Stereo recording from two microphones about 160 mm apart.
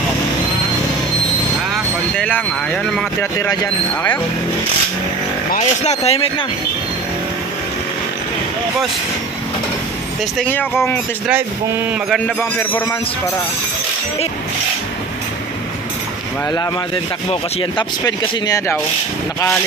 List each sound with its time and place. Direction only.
2.1 s speech: 10° left (ahead or behind)
5.6 s speech: 40° left (ahead or behind)
10.4 s speech: 10° left (ahead or behind)
12.4 s speech: 10° left (ahead or behind)
17.3 s speech: 30° left (ahead or behind)